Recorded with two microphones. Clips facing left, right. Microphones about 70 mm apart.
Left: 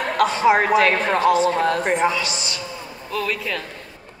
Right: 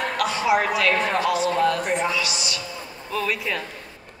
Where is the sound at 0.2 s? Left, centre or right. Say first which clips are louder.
Left 5 dB; left.